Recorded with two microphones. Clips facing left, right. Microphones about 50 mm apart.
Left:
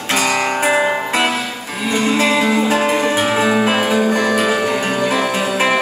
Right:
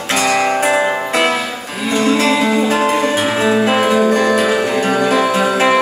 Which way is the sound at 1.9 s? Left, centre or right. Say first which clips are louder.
Right 2 dB; centre.